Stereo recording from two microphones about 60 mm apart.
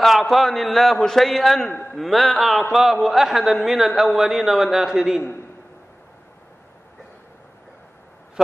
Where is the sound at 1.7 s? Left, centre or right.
Left.